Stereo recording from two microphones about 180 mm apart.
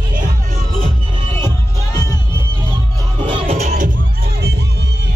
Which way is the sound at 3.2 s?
30° right (ahead or behind).